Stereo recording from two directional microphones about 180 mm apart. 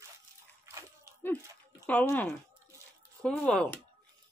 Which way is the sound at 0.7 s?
15° right (ahead or behind).